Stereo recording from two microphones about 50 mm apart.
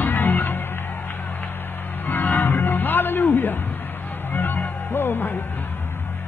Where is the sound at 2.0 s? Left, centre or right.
Left.